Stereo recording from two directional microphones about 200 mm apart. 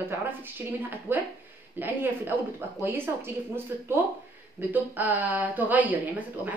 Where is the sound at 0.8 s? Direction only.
10° right (ahead or behind).